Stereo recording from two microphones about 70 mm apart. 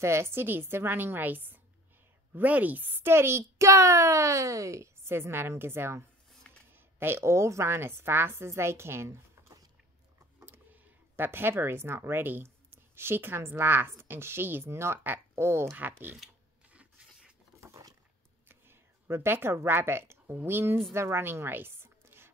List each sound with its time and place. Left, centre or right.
0.0 s a woman's voice: right
5.1 s a woman's voice: right
10.4 s speech: right
16.7 s a sound: centre
18.5 s a sound: right
20.4 s a woman's voice: right